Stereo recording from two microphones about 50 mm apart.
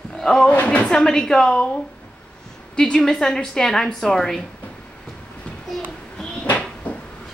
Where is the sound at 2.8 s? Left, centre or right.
Centre.